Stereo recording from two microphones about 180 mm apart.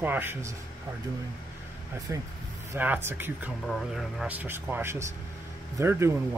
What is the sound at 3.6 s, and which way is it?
Speech, centre (ahead or behind).